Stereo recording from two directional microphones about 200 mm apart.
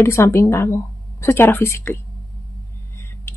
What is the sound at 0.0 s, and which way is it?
A woman's voice, 15° left (ahead or behind).